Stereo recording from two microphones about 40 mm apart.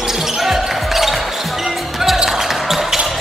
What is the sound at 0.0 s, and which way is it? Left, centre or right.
Basketball bounce, centre.